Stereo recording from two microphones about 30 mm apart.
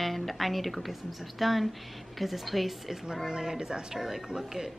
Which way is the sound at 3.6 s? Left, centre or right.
Right.